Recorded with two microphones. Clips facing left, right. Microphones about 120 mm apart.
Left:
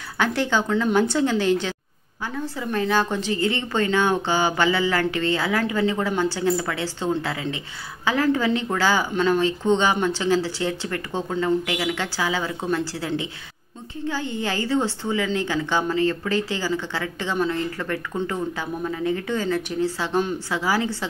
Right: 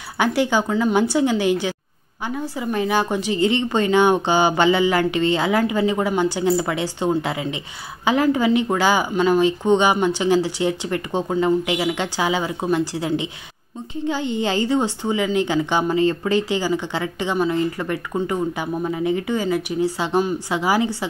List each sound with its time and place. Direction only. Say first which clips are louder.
0.2 s a woman's voice: right 3 dB; 15° right (ahead or behind)